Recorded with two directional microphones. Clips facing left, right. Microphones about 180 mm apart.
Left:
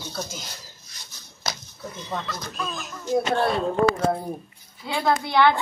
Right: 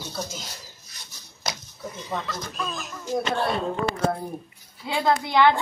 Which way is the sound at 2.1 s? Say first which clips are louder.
Even; centre (ahead or behind).